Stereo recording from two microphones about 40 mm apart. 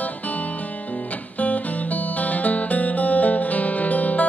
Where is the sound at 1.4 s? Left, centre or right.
Left.